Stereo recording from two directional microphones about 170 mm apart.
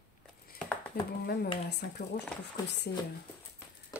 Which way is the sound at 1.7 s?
75° left (ahead or behind).